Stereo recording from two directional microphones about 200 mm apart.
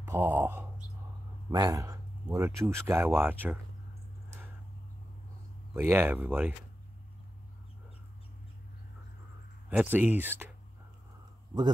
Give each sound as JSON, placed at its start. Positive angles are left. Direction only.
{"t": 0.0, "sound": "speech", "side_deg": -10}
{"t": 5.8, "sound": "speech", "side_deg": -10}
{"t": 9.7, "sound": "speech", "side_deg": -10}